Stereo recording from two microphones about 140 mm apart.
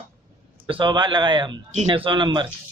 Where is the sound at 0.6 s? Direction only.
35° right (ahead or behind).